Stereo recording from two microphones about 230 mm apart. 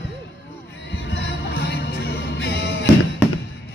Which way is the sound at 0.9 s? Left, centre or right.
Left.